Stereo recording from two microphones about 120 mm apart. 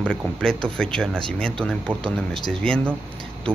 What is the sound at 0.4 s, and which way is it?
Speech, 5° left (ahead or behind).